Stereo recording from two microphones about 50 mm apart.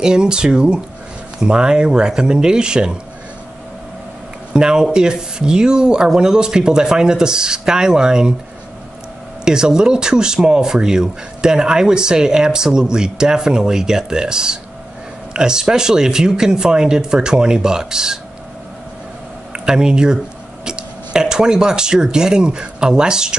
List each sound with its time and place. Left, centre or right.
0.0 s speech: centre
4.6 s speech: centre
9.4 s speech: centre
19.5 s speech: centre